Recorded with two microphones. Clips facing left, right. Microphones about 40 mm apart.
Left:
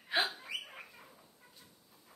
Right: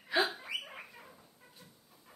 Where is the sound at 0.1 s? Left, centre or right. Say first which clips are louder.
Right 2 dB; left.